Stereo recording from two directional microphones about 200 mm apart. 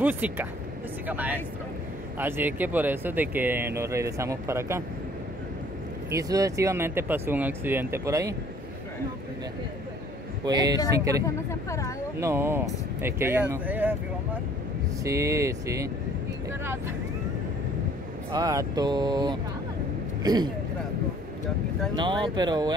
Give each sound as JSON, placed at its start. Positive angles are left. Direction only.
{"t": 0.0, "sound": "speech", "side_deg": -10}
{"t": 6.1, "sound": "speech", "side_deg": -15}
{"t": 10.4, "sound": "speech", "side_deg": -20}
{"t": 11.2, "sound": "speech", "side_deg": 15}
{"t": 12.2, "sound": "speech", "side_deg": -15}
{"t": 15.0, "sound": "speech", "side_deg": -15}
{"t": 18.3, "sound": "speech", "side_deg": -20}
{"t": 21.9, "sound": "speech", "side_deg": -20}